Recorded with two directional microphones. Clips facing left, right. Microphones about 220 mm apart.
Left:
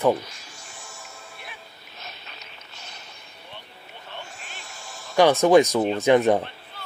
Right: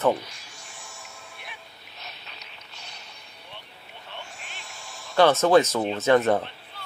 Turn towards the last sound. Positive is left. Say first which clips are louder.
# left 2 dB
turn(degrees=15)  # may be behind; listen again after turning